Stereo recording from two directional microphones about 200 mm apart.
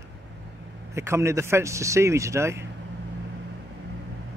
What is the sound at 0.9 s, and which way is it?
A man's voice, 15° right (ahead or behind).